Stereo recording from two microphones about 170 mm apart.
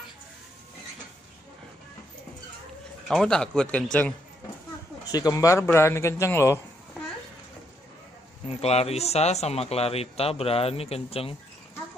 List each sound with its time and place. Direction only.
3.1 s speech: 5° left (ahead or behind)
5.1 s a man's voice: 20° left (ahead or behind)
8.5 s speech: 35° left (ahead or behind)